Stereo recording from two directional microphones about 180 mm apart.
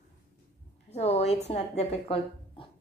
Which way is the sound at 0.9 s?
35° left (ahead or behind).